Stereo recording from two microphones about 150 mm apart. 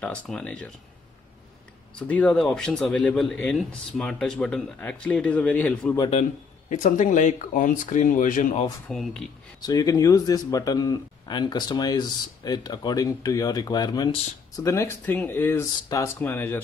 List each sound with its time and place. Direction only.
0.0 s speech: 5° left (ahead or behind)
2.0 s speech: 10° left (ahead or behind)
6.7 s speech: 60° left (ahead or behind)
8.8 s speech: centre (ahead or behind)
9.6 s a man's voice: 25° left (ahead or behind)